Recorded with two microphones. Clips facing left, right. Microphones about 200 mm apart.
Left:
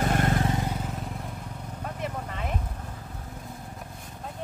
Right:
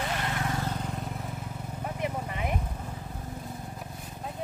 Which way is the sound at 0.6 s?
10° left (ahead or behind).